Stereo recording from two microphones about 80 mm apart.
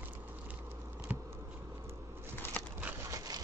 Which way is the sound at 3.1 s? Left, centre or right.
Right.